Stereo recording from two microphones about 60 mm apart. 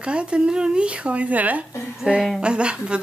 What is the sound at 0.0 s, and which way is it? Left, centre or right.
Speech, centre.